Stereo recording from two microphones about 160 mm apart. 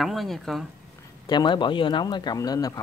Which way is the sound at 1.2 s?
30° left (ahead or behind).